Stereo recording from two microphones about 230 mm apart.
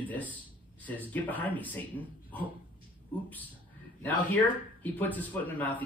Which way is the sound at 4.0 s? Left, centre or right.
Centre.